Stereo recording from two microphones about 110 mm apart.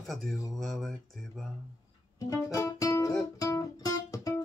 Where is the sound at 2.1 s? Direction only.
30° left (ahead or behind).